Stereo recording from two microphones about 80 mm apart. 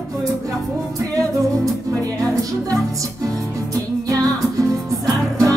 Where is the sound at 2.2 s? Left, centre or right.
Right.